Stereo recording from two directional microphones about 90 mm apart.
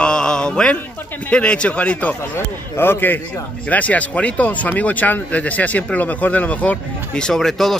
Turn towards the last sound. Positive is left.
turn(degrees=5)  # may be behind; listen again after turning